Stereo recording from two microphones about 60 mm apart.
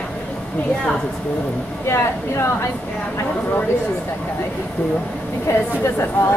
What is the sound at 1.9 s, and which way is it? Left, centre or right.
Speech, left.